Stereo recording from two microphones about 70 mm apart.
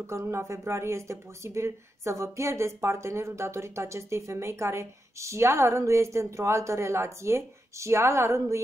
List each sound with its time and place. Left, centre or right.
0.0 s speech: right